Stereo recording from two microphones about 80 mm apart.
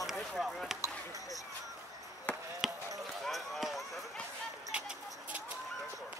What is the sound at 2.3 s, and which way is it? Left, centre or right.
Chop, centre.